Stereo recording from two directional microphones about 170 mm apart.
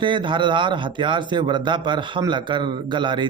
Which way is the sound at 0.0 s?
30° right (ahead or behind).